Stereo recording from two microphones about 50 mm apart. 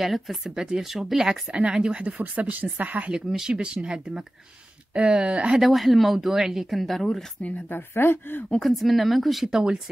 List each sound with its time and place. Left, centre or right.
0.0 s speech: centre
1.5 s speech: centre
2.0 s speech: right
3.1 s speech: centre
5.6 s speech: centre
6.8 s speech: centre
7.4 s speech: left
7.7 s speech: left
8.5 s speech: centre